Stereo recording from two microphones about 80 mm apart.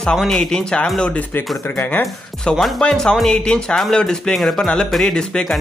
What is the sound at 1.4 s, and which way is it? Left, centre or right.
Speech, left.